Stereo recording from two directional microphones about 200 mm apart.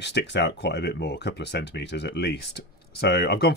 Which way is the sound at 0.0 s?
60° left (ahead or behind).